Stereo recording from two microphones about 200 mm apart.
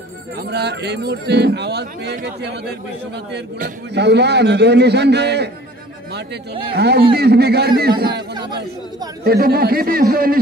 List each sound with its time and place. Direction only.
0.4 s speech: 55° right (ahead or behind)
6.7 s a man's voice: 55° right (ahead or behind)
9.2 s a man's voice: 50° right (ahead or behind)